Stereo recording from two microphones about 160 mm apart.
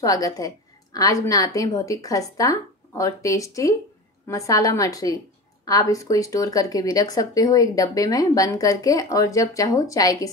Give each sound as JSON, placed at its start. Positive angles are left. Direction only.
{"t": 0.0, "sound": "speech", "side_deg": 20}